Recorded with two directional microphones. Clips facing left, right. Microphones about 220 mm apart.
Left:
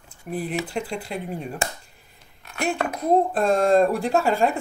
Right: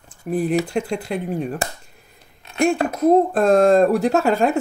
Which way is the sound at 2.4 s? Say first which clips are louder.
Right 7 dB; 25° right (ahead or behind).